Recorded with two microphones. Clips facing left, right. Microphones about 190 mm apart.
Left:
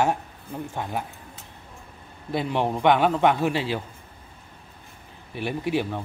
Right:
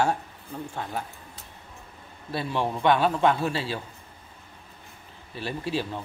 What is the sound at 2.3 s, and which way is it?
A man's voice, 15° left (ahead or behind).